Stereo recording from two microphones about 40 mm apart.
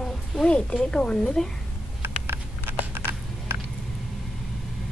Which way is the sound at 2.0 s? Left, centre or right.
Right.